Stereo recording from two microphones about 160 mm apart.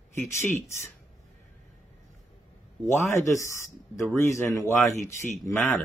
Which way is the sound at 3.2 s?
20° left (ahead or behind).